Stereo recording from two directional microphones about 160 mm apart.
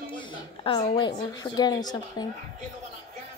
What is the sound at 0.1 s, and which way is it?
A woman's voice, 30° left (ahead or behind).